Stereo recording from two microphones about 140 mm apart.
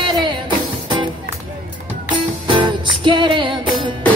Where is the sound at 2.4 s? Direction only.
35° right (ahead or behind).